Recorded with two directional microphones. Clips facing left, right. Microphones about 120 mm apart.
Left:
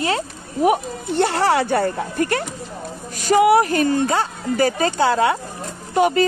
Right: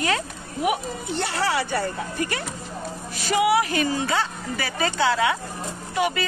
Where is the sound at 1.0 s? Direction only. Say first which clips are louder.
Left 8 dB; 55° left (ahead or behind).